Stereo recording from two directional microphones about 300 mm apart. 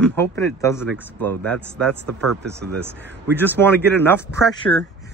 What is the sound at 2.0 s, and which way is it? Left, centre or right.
Speech, right.